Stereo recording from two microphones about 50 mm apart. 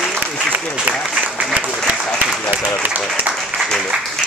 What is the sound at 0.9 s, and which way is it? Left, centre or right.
Applause, right.